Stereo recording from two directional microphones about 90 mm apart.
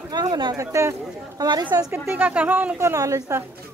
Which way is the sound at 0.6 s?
35° right (ahead or behind).